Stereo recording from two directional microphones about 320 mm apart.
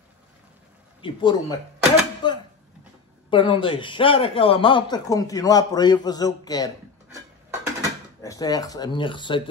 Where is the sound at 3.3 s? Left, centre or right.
Centre.